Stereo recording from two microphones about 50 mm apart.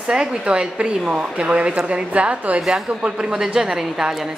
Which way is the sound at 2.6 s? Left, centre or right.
Centre.